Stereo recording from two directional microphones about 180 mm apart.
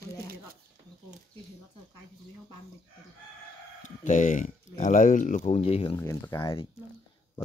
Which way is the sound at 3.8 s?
45° left (ahead or behind).